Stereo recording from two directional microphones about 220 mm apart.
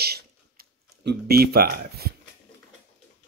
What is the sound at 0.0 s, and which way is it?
Tick-tock, 45° right (ahead or behind).